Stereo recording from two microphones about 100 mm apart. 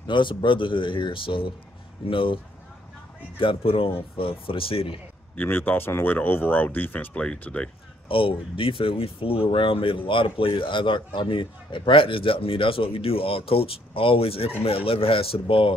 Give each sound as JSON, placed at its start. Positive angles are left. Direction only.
{"t": 0.0, "sound": "speech", "side_deg": 55}
{"t": 5.3, "sound": "speech", "side_deg": 20}
{"t": 8.1, "sound": "speech", "side_deg": 65}